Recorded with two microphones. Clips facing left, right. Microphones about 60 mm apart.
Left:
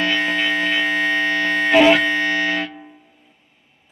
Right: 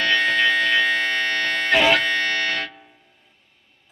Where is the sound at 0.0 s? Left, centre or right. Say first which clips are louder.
Right 1 dB; centre.